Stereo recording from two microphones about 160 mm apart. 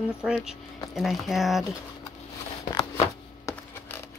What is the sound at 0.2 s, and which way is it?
Speech, 5° right (ahead or behind).